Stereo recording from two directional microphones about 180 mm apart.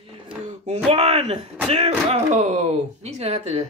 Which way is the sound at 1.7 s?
35° right (ahead or behind).